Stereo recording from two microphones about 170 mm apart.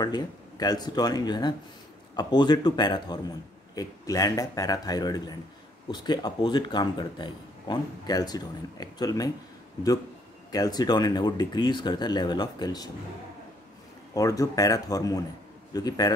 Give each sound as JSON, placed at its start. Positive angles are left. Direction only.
{"t": 0.0, "sound": "speech", "side_deg": 25}
{"t": 10.5, "sound": "speech", "side_deg": 20}
{"t": 14.1, "sound": "speech", "side_deg": 20}